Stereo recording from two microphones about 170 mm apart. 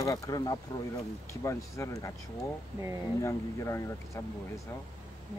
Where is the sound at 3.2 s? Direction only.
15° left (ahead or behind).